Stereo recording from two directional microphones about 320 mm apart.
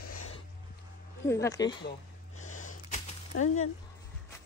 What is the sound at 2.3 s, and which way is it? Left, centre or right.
Gasp, left.